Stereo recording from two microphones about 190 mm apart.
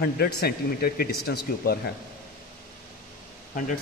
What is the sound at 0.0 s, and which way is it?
Speech, 55° left (ahead or behind).